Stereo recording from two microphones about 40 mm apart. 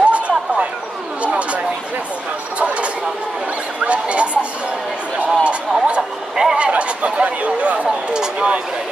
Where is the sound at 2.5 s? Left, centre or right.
Right.